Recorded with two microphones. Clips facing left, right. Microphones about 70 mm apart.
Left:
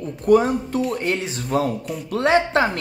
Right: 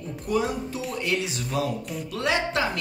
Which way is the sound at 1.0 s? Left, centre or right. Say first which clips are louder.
Left 3 dB; left.